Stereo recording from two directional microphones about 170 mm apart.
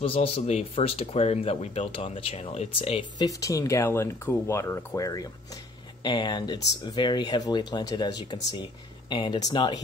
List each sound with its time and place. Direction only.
0.0 s speech: 35° left (ahead or behind)
3.2 s speech: 20° left (ahead or behind)